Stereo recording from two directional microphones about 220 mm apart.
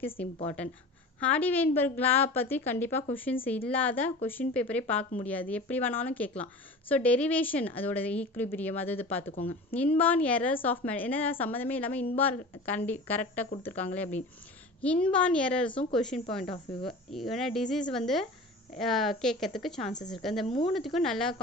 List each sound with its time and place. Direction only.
0.2 s a woman's voice: 5° left (ahead or behind)
9.3 s speech: 40° left (ahead or behind)
9.9 s a woman's voice: 5° left (ahead or behind)
20.4 s speech: 25° left (ahead or behind)
20.7 s speech: centre (ahead or behind)